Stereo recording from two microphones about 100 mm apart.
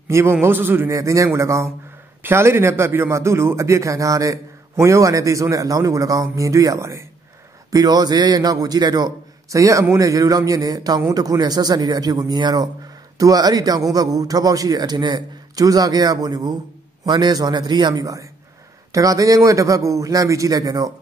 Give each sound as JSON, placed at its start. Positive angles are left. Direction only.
{"t": 0.1, "sound": "a man's voice", "side_deg": -25}
{"t": 7.7, "sound": "a man's voice", "side_deg": -40}
{"t": 18.0, "sound": "a man's voice", "side_deg": -35}